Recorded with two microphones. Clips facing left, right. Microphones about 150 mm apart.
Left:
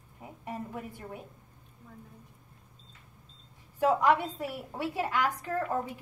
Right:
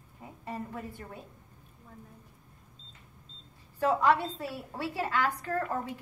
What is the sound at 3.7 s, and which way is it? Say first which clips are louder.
A woman's voice: left 1 dB; 15° left (ahead or behind).